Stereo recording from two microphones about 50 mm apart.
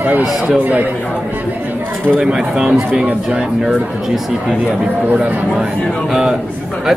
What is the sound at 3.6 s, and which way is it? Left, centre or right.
Speech, centre.